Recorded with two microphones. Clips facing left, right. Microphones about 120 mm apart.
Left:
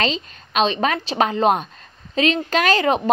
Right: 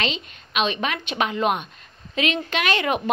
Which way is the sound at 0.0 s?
35° left (ahead or behind).